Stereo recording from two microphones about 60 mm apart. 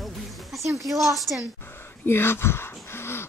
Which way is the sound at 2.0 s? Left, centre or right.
Left.